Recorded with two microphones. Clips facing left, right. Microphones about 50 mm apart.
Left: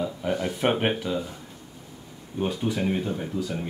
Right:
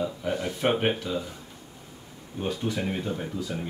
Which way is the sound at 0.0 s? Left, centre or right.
Centre.